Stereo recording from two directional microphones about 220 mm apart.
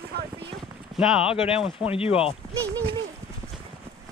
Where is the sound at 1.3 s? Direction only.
25° left (ahead or behind).